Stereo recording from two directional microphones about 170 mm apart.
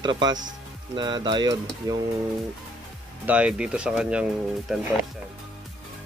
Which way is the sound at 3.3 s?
5° right (ahead or behind).